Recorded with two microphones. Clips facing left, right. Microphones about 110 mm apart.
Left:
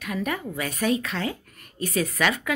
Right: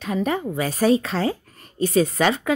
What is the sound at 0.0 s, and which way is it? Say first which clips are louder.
A woman's voice: right 5 dB; 30° right (ahead or behind).